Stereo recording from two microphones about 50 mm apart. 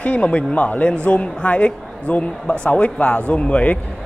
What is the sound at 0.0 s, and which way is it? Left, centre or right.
A man's voice, left.